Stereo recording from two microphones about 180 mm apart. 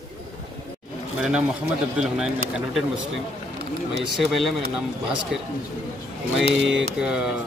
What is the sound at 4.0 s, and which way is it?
Speech, centre (ahead or behind).